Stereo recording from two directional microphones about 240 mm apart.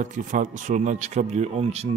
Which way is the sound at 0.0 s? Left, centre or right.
Right.